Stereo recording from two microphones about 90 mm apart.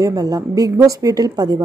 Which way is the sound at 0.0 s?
45° right (ahead or behind).